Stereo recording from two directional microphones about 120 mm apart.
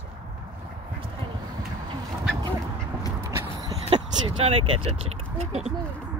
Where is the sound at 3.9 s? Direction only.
45° right (ahead or behind); by 5.7 s 65° right (ahead or behind).